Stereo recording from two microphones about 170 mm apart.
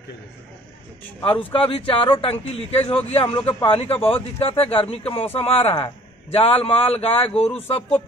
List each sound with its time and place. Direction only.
1.2 s speech: 35° left (ahead or behind)